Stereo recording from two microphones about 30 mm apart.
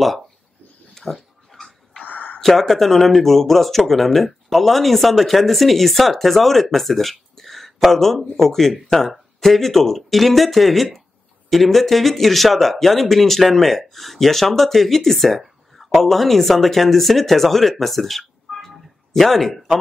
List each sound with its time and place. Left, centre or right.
0.9 s pig: centre
2.0 s a sound: left
2.4 s speech: centre